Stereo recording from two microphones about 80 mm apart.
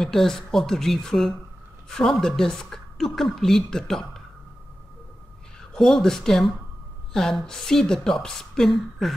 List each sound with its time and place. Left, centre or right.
0.0 s a woman's voice: centre
5.8 s a woman's voice: centre